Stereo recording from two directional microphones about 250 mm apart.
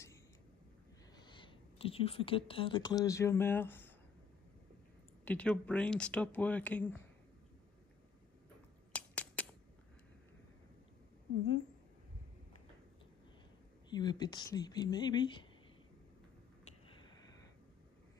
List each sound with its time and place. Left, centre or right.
1.1 s speech: centre
5.2 s speech: centre
8.9 s a sound: centre
13.8 s speech: centre